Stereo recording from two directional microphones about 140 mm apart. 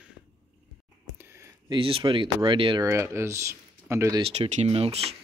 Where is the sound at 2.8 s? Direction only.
20° right (ahead or behind).